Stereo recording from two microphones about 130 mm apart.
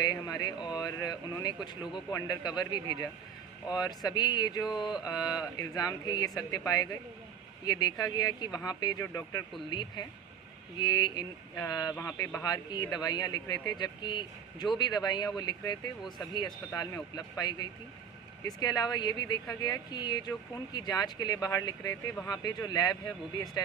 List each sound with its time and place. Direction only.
0.0 s speech: 30° left (ahead or behind)
9.7 s speech: 35° left (ahead or behind); by 12.4 s 20° left (ahead or behind)
12.4 s speech: 30° left (ahead or behind)